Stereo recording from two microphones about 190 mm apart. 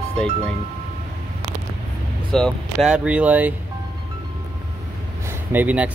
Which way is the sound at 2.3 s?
Centre (ahead or behind).